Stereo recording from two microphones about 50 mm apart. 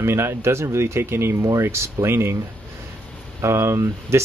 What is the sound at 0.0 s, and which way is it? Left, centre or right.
Speech, right.